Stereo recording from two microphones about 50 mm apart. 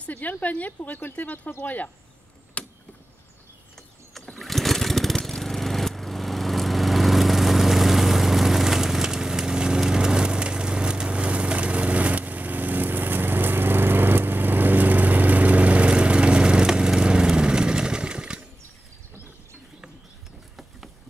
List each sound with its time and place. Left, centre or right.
0.0 s a woman's voice: left
2.6 s a sound: left
3.7 s lawn mower: centre